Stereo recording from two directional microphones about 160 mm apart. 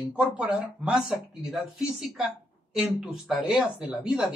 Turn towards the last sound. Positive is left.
turn(degrees=-5)  # may be behind; listen again after turning